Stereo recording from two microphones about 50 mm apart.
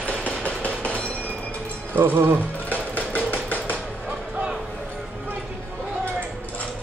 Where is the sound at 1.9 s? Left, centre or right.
Right.